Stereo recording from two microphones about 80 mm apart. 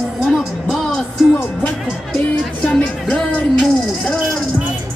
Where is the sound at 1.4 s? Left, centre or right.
Left.